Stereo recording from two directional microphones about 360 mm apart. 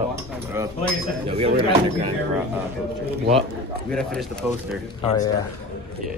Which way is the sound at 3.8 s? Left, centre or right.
Centre.